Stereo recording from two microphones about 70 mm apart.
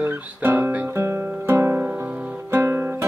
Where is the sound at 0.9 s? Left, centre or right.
Right.